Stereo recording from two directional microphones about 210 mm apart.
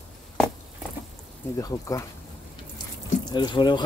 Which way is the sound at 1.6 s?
15° left (ahead or behind).